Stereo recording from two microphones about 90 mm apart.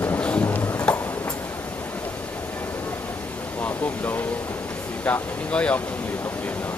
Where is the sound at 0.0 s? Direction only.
20° left (ahead or behind).